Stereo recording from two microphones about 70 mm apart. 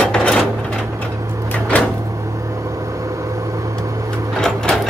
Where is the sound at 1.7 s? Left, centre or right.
Left.